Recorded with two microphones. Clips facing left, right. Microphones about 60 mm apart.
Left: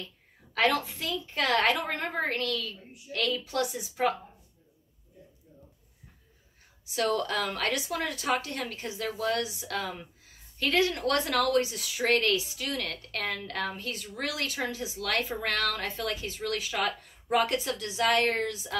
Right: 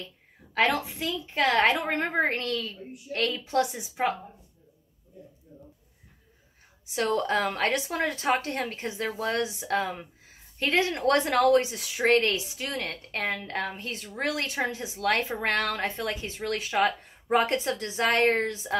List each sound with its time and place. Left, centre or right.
0.6 s speech: right
7.0 s speech: right